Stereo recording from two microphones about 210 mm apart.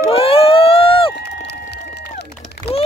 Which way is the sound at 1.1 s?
55° left (ahead or behind).